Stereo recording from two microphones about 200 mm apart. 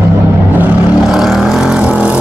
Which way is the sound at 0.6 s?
Centre (ahead or behind).